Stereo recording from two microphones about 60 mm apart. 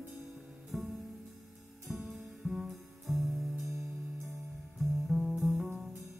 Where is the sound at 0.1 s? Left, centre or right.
Centre.